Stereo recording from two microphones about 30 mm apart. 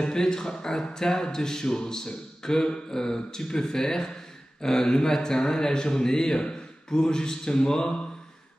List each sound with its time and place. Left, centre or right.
0.0 s speech: left